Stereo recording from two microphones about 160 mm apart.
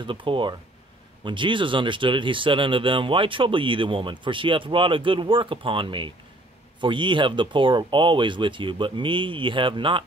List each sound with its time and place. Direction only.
0.0 s speech: 30° right (ahead or behind)